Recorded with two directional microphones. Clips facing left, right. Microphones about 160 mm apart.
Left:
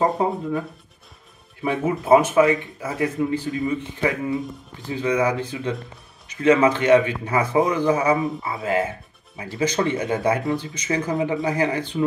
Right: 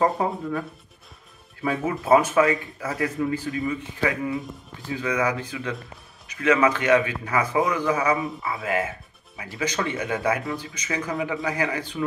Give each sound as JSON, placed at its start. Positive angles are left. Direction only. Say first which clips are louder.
{"t": 0.0, "sound": "a man's voice", "louder": "left 2 dB", "side_deg": 25}